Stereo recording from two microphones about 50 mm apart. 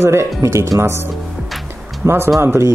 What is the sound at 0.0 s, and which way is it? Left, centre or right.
Speech, right.